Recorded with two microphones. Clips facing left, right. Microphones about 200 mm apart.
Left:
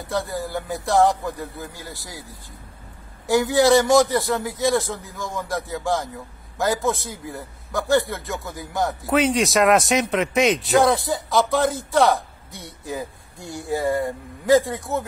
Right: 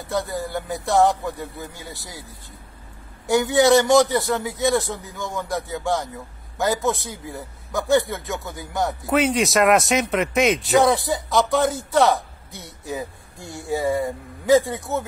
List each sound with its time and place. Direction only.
0.0 s a man's voice: centre (ahead or behind)
3.3 s a man's voice: centre (ahead or behind)